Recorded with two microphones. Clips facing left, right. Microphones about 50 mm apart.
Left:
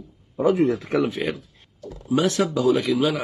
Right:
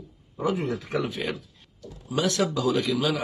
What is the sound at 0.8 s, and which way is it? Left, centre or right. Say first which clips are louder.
Speech: left 6 dB; left.